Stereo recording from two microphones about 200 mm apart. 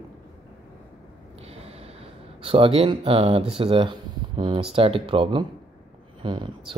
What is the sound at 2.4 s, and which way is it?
Speech, 30° right (ahead or behind).